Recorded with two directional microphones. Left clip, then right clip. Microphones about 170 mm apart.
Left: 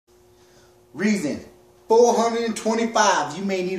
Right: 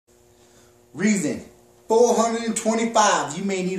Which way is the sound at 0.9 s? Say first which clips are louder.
Even; 20° right (ahead or behind).